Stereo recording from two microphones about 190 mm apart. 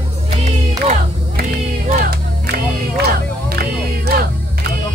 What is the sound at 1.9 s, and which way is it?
Music, 50° right (ahead or behind).